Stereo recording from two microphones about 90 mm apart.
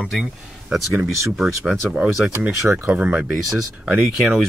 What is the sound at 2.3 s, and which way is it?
Speech, 30° right (ahead or behind).